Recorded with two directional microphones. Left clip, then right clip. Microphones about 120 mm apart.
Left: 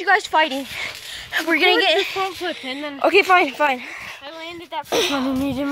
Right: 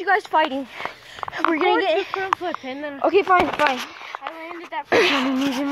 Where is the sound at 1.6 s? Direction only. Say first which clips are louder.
Left 4 dB; 10° right (ahead or behind).